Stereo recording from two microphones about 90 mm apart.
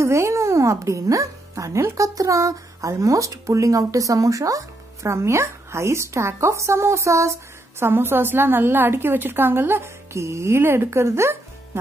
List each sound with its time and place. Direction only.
0.0 s a woman's voice: 30° right (ahead or behind)